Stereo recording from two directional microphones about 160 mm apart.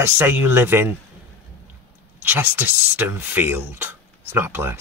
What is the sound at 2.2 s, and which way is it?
Speech, 10° right (ahead or behind).